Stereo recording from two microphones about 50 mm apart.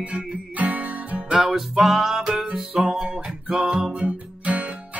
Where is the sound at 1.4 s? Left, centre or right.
Centre.